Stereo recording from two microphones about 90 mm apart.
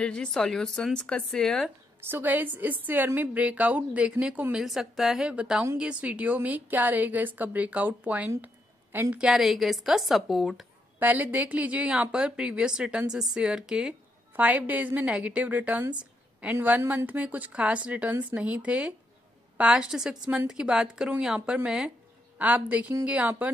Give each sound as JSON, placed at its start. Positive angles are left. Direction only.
{"t": 0.0, "sound": "a woman's voice", "side_deg": 10}
{"t": 2.0, "sound": "a woman's voice", "side_deg": -25}
{"t": 11.0, "sound": "speech", "side_deg": -20}
{"t": 14.3, "sound": "speech", "side_deg": -20}